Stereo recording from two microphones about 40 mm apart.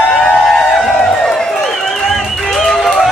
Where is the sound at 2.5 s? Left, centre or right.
Centre.